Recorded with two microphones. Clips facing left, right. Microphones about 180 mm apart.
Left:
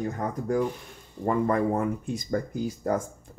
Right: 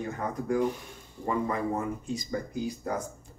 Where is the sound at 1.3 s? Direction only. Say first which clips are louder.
Left 5 dB; 55° left (ahead or behind).